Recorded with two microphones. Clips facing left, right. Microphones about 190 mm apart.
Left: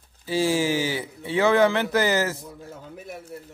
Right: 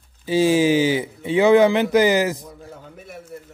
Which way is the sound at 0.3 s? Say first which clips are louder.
Right 6 dB; 20° right (ahead or behind).